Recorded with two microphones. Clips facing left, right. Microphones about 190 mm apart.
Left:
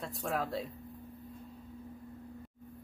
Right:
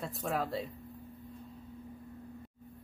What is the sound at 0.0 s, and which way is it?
Speech, centre (ahead or behind).